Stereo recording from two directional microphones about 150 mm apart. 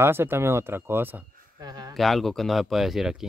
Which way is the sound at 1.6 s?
25° right (ahead or behind).